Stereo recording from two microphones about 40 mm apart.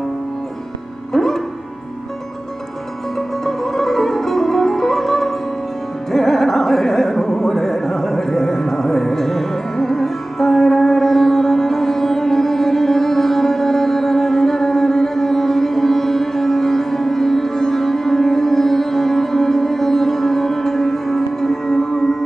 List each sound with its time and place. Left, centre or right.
1.1 s music: centre
3.2 s music: centre